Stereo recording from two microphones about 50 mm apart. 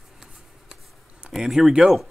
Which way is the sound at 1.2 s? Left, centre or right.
Centre.